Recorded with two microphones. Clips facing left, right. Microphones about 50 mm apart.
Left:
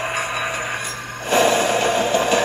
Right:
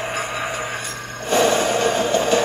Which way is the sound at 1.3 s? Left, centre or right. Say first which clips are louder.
Left 1 dB; centre.